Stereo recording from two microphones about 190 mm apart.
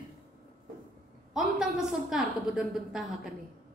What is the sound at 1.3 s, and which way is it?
A woman's voice, centre (ahead or behind).